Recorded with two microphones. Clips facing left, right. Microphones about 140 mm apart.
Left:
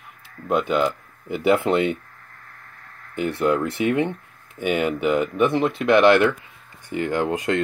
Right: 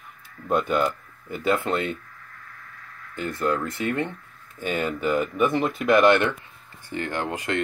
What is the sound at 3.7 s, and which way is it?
Speech, 15° left (ahead or behind).